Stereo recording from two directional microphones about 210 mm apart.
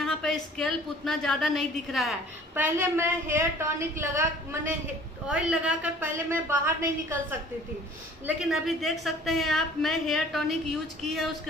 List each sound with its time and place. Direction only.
0.0 s a woman's voice: centre (ahead or behind)
8.4 s a woman's voice: centre (ahead or behind)